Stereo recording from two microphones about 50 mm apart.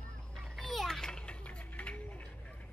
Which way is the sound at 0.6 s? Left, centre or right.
Centre.